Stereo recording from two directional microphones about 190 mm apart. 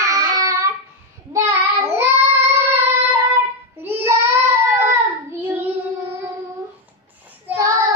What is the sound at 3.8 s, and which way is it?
Child singing, 10° right (ahead or behind).